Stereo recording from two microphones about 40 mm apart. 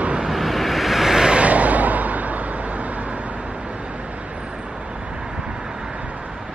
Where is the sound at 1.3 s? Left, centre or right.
Right.